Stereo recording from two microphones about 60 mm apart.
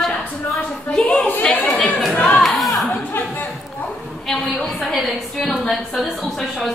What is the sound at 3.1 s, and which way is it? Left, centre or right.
Speech, left.